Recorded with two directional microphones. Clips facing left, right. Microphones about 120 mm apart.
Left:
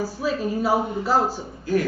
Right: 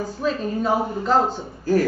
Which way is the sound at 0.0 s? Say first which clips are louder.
Right 1 dB; 5° left (ahead or behind).